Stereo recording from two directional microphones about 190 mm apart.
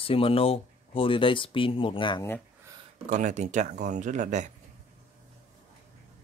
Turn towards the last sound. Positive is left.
turn(degrees=-40)  # may be behind; listen again after turning